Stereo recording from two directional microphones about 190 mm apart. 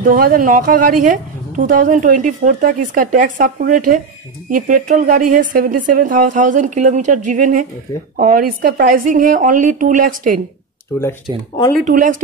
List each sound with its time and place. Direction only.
0.0 s a woman's voice: 45° right (ahead or behind)
11.7 s a woman's voice: 45° right (ahead or behind)